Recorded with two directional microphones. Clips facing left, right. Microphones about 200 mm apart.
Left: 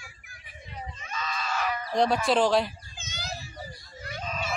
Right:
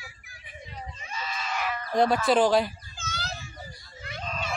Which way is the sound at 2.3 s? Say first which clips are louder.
Right 2 dB; centre (ahead or behind).